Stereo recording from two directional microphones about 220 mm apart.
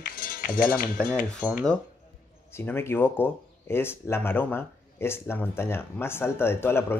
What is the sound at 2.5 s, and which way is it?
Speech, 10° left (ahead or behind).